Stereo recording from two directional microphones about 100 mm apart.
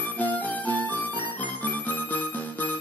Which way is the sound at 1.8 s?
15° left (ahead or behind).